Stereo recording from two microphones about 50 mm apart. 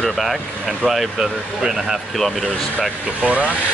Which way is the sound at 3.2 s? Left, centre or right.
Right.